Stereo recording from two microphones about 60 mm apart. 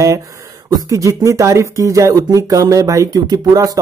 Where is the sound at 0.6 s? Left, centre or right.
Right.